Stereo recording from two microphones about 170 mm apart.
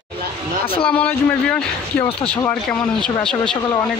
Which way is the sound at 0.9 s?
10° left (ahead or behind).